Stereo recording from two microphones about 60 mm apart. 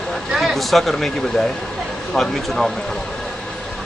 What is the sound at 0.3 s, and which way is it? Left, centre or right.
Speech, centre.